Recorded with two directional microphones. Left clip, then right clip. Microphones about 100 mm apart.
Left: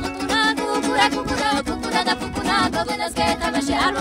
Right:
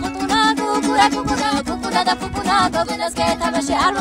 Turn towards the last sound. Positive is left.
turn(degrees=-10)  # may be behind; listen again after turning